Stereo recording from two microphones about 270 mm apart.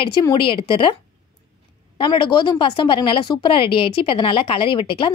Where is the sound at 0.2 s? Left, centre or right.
Centre.